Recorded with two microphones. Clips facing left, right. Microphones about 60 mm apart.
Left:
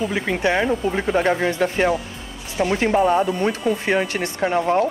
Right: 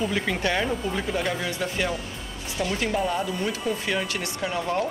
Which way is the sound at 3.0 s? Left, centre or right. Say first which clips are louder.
Left 8 dB; left.